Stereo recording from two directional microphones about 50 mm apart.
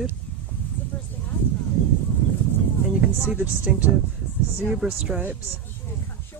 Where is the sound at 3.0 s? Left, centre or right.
Right.